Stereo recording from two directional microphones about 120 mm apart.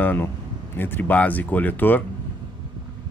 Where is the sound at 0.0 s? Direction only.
15° left (ahead or behind).